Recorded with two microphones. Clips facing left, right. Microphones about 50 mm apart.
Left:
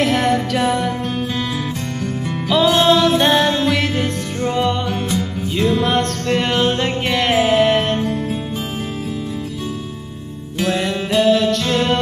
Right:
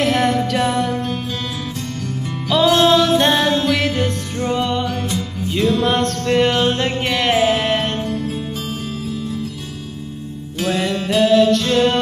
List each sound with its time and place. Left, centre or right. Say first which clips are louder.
0.0 s music: even; centre
2.4 s music: even; centre
10.6 s music: left 1 dB; centre